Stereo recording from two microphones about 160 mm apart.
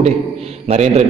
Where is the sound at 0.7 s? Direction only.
45° right (ahead or behind).